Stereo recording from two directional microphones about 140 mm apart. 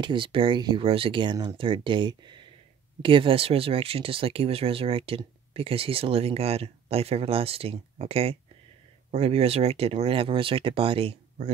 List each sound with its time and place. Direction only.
0.0 s speech: 35° right (ahead or behind)